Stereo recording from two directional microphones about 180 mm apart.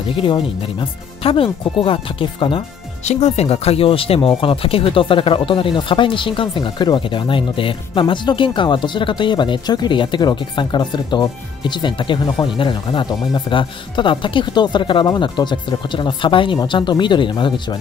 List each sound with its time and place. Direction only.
0.1 s speech: 30° left (ahead or behind)
3.1 s speech: 40° left (ahead or behind)